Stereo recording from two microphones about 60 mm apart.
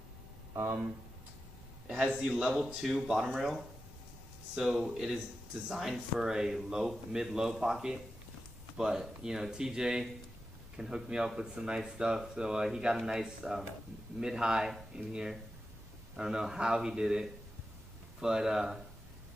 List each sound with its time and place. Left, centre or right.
2.2 s speech: centre
4.6 s speech: centre